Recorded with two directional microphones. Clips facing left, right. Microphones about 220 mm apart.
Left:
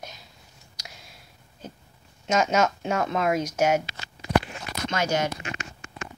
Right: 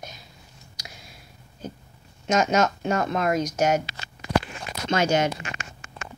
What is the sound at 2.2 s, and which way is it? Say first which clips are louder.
Speech: right 1 dB; 5° left (ahead or behind).